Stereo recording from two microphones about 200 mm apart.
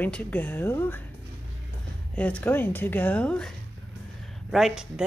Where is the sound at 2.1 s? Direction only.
5° left (ahead or behind).